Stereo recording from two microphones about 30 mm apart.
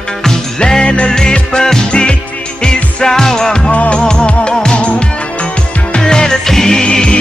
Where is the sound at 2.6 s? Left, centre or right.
Left.